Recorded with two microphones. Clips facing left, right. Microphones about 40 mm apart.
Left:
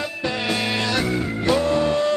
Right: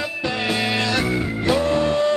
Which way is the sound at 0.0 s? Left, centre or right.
Centre.